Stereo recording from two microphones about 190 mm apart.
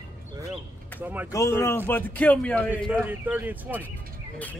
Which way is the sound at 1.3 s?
15° left (ahead or behind).